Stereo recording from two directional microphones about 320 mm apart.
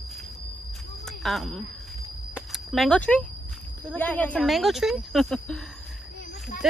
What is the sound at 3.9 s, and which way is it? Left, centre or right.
Speech, centre.